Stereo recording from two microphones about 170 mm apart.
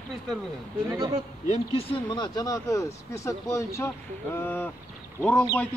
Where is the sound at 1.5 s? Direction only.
30° left (ahead or behind).